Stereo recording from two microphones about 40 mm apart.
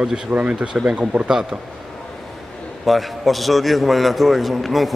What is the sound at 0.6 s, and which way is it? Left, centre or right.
Speech, centre.